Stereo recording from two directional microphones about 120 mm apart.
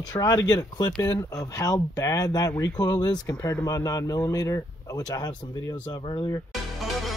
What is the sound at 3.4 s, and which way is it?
Speech, 20° left (ahead or behind).